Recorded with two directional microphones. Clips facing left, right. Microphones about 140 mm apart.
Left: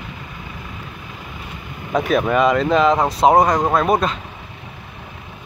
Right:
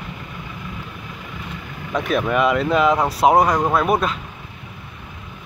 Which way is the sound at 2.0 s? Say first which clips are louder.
Left 2 dB; centre (ahead or behind).